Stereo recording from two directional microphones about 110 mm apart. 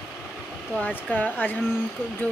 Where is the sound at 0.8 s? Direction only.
15° left (ahead or behind).